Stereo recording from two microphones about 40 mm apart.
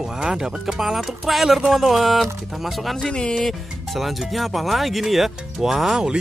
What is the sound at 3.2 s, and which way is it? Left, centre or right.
Music, left.